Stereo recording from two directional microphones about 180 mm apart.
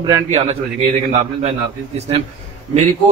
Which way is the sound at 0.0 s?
30° right (ahead or behind).